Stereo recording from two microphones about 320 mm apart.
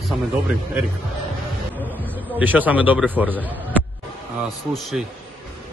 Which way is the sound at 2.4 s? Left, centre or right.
Centre.